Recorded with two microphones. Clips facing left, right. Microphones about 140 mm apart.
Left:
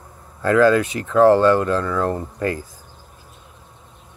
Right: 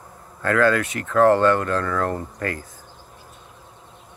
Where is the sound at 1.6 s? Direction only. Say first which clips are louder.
Left 3 dB; 15° left (ahead or behind).